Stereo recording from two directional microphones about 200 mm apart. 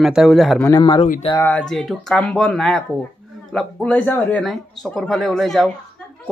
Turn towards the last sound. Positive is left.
turn(degrees=0)  # may be behind; listen again after turning